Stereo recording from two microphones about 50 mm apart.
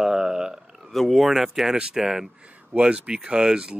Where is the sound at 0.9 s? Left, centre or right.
Centre.